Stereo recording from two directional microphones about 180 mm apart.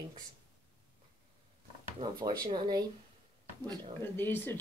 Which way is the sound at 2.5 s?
20° right (ahead or behind).